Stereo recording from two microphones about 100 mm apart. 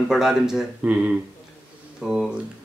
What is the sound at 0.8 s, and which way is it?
Speech, 20° right (ahead or behind).